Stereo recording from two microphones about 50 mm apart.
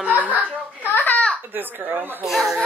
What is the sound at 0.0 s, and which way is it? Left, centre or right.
Chuckle, right.